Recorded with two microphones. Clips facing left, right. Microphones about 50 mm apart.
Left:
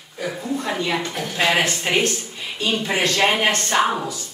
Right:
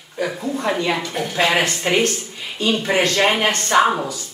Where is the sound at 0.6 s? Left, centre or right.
Right.